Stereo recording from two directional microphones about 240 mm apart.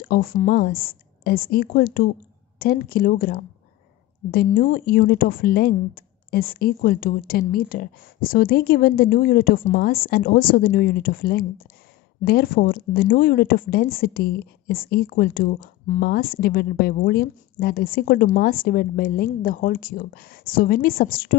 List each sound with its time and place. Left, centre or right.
0.1 s speech: left